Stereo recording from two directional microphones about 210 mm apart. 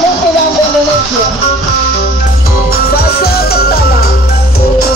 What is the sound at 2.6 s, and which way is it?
Music, 45° left (ahead or behind).